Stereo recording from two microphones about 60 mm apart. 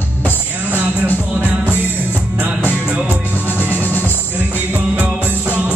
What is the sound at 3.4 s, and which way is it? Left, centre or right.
Music, left.